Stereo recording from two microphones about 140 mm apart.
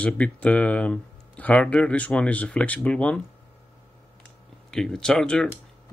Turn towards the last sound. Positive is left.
turn(degrees=5)  # may be behind; listen again after turning